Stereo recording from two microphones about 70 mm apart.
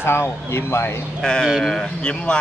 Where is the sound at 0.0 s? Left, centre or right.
Left.